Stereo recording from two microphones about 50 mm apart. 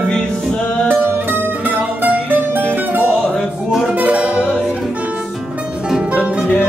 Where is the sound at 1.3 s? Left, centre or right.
Right.